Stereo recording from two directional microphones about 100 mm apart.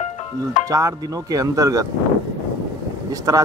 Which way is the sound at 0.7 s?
35° right (ahead or behind).